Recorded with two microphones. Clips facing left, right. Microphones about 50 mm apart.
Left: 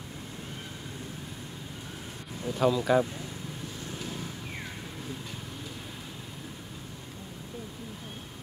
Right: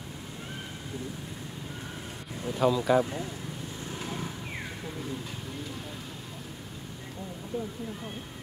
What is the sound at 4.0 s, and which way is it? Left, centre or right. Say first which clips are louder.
Vehicle: right 3 dB; right.